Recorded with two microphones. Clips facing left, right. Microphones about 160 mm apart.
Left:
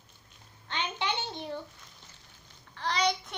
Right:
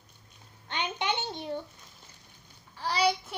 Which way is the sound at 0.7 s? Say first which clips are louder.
Right 2 dB; 15° right (ahead or behind).